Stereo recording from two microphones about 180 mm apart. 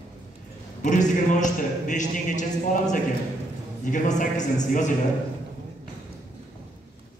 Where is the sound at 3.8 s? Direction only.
45° left (ahead or behind).